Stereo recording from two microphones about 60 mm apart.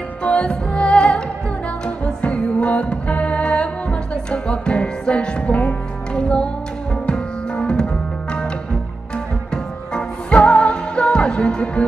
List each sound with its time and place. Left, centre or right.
0.2 s music: left
9.1 s music: centre